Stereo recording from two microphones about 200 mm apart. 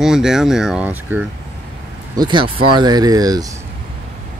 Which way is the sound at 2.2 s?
25° right (ahead or behind).